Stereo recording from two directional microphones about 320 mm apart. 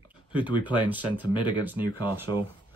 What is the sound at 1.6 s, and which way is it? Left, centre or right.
Speech, centre.